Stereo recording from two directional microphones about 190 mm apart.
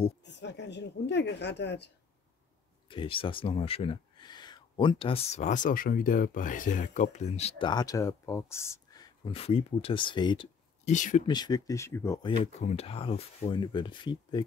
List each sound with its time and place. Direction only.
0.2 s a woman's voice: 65° left (ahead or behind)
2.9 s speech: 25° left (ahead or behind)
10.9 s speech: 40° left (ahead or behind)
11.2 s speech: 20° left (ahead or behind)
12.3 s speech: 30° left (ahead or behind)